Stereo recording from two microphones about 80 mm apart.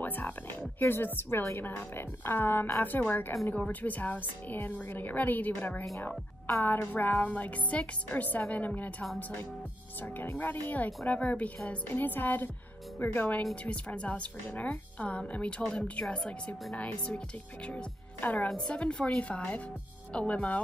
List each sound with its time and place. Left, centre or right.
0.0 s music: left
0.7 s a woman's voice: left
10.4 s a woman's voice: left
18.2 s a woman's voice: centre